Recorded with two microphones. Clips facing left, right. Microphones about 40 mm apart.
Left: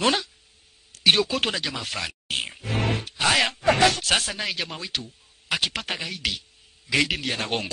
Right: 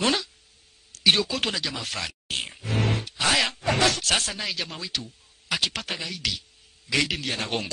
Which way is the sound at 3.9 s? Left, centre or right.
Centre.